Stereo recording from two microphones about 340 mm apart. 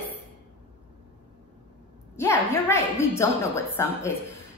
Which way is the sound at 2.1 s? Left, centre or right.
Centre.